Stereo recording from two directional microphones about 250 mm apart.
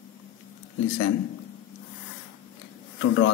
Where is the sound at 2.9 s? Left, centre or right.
Left.